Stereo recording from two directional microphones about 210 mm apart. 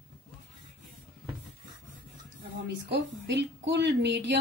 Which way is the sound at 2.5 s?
55° right (ahead or behind).